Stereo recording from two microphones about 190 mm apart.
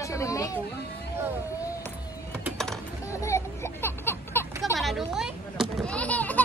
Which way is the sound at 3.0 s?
15° left (ahead or behind).